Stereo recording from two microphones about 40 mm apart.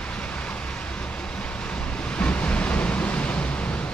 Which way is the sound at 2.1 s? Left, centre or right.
Left.